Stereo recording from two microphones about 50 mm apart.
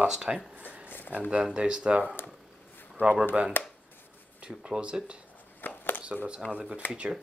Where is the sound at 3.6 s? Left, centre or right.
Left.